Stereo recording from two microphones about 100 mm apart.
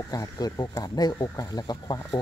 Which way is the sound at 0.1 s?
40° left (ahead or behind).